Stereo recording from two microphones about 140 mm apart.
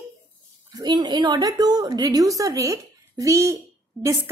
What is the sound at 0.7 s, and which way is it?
A woman's voice, 30° right (ahead or behind).